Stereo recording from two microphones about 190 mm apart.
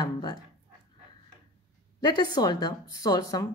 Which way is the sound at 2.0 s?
20° left (ahead or behind).